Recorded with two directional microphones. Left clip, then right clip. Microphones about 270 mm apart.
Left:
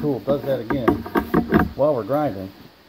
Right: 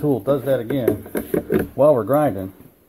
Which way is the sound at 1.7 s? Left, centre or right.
Right.